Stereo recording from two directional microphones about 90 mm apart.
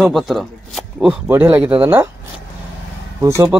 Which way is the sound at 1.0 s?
20° right (ahead or behind).